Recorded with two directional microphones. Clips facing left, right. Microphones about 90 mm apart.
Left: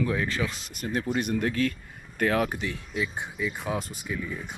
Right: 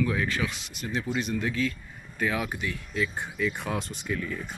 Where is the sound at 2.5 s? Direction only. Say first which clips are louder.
Left 1 dB; 30° left (ahead or behind).